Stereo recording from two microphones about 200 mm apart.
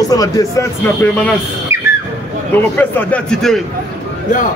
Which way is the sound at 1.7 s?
15° right (ahead or behind).